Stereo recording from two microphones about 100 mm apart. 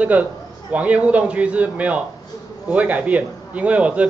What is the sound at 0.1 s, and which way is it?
A man's voice, 15° right (ahead or behind).